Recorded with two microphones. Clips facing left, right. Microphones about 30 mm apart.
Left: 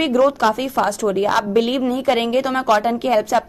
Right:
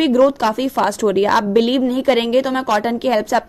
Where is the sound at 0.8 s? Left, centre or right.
Right.